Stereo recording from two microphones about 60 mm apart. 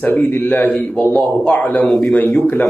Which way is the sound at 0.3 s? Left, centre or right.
Left.